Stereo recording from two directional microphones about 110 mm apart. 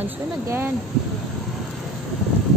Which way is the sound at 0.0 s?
20° right (ahead or behind).